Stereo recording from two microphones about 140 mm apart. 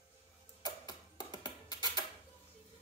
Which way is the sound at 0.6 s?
30° left (ahead or behind).